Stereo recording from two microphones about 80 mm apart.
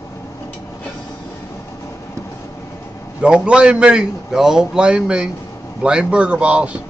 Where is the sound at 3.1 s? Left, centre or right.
Centre.